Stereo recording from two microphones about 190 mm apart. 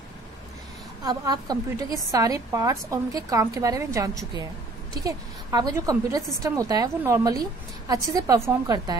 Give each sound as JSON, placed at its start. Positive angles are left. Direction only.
{"t": 1.0, "sound": "a woman's voice", "side_deg": -20}